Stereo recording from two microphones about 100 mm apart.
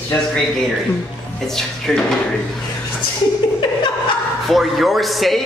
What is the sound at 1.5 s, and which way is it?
Speech, 5° left (ahead or behind).